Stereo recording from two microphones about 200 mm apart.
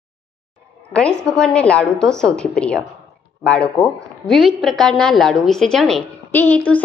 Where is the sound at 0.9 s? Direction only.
5° left (ahead or behind).